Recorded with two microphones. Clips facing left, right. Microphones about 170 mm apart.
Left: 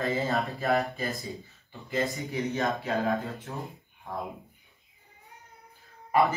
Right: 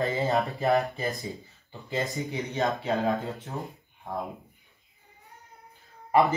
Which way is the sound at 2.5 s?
20° right (ahead or behind).